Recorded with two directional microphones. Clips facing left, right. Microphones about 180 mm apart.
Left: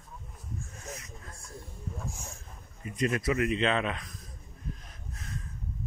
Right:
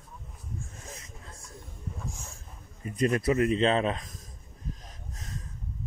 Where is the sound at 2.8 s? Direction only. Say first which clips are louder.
Right 3 dB; 35° right (ahead or behind).